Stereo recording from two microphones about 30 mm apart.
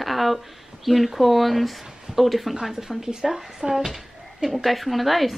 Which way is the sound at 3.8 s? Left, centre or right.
Centre.